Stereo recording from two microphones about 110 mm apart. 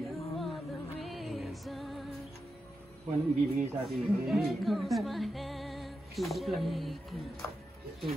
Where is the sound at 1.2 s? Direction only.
Centre (ahead or behind).